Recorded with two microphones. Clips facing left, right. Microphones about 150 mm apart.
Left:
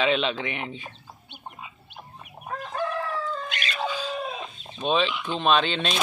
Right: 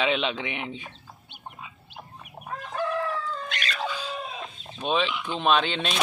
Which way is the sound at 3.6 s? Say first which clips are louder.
Left 2 dB; 15° left (ahead or behind).